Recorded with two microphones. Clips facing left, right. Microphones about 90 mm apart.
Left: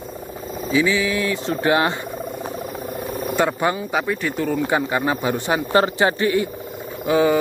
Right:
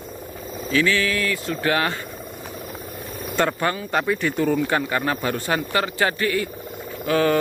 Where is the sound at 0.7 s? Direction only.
15° left (ahead or behind).